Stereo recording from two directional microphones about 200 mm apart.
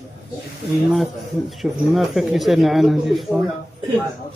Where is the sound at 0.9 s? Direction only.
Centre (ahead or behind).